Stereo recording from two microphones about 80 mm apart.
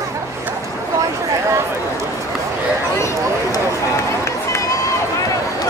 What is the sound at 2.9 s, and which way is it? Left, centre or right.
Speech, left.